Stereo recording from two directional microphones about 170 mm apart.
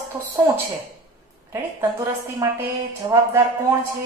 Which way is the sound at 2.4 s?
20° right (ahead or behind).